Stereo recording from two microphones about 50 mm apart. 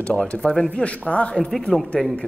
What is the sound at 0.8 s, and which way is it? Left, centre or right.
Speech, left.